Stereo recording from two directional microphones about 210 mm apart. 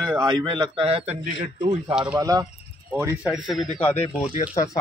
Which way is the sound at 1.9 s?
5° right (ahead or behind).